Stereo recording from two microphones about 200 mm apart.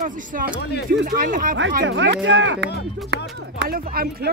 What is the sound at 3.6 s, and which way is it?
Speech, 50° right (ahead or behind).